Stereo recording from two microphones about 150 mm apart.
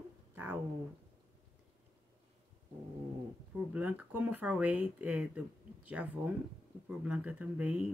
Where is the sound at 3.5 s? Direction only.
10° right (ahead or behind).